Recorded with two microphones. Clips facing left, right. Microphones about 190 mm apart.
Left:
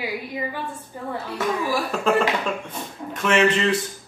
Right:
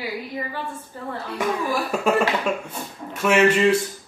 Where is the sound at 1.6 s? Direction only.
5° right (ahead or behind).